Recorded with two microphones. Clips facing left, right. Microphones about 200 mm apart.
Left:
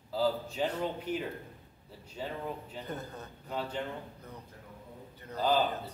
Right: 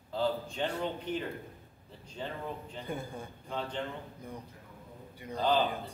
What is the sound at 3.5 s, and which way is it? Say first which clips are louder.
Speech: left 1 dB; 5° left (ahead or behind).